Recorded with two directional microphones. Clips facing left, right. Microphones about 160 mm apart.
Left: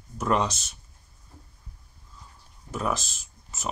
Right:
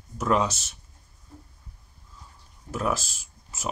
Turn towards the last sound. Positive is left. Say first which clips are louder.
# even
turn(degrees=-10)  # may be behind; listen again after turning